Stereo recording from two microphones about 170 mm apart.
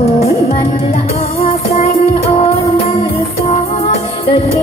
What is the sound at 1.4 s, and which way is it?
Music, 35° left (ahead or behind).